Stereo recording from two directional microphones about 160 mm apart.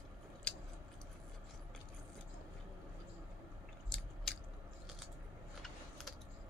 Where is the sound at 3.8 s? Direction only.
5° left (ahead or behind).